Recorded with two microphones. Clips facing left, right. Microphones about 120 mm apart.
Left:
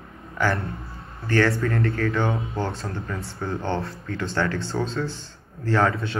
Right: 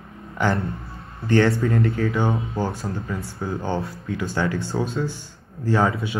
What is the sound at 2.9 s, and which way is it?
A man's voice, 15° right (ahead or behind).